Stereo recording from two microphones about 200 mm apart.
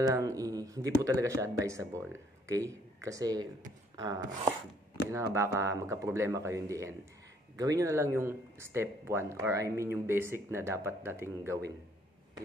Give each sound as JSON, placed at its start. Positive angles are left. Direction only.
{"t": 0.0, "sound": "speech", "side_deg": -15}